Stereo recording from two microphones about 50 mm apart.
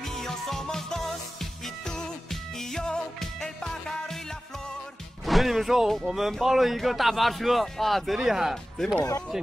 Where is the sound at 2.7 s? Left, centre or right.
Centre.